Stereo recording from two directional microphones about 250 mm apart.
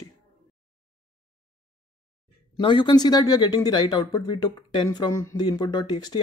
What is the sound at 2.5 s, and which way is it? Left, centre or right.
Speech, centre.